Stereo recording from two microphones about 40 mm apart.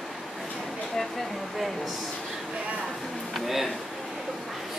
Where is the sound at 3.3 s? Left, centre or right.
Centre.